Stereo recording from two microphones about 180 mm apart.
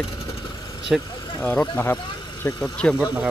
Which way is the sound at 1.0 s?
25° left (ahead or behind).